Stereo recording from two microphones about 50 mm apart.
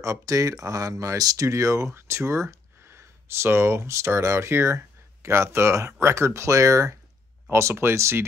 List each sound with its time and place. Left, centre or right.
0.0 s speech: right
2.0 s speech: right
7.5 s speech: right